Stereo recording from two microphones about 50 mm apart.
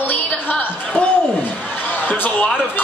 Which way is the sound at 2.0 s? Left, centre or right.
Left.